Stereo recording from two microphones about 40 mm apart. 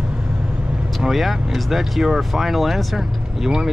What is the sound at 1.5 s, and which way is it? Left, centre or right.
Speech, centre.